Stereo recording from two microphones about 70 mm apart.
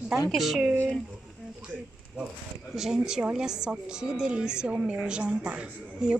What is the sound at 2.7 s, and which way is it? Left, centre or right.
A woman's voice, centre.